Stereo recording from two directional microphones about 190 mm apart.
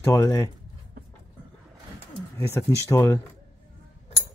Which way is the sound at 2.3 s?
10° left (ahead or behind).